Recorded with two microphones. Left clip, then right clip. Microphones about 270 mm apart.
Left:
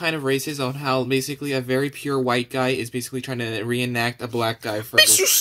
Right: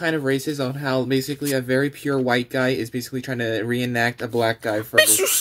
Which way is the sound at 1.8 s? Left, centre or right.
Centre.